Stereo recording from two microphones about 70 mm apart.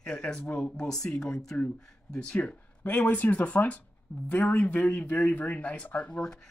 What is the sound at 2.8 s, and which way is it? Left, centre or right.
Speech, left.